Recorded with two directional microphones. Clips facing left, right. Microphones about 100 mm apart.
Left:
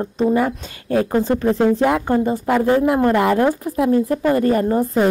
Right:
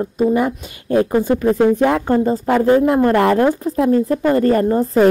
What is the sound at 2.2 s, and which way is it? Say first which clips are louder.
Speech: right 2 dB; 30° right (ahead or behind).